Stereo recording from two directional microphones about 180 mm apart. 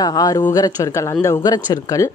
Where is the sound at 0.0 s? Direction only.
20° left (ahead or behind).